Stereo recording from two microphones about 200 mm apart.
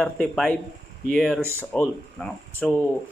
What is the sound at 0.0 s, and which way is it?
Speech, 5° left (ahead or behind).